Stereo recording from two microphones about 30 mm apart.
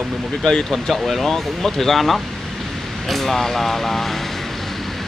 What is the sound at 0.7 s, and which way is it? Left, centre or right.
Speech, centre.